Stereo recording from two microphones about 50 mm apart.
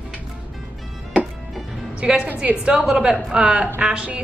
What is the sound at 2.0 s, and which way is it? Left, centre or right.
A woman's voice, right.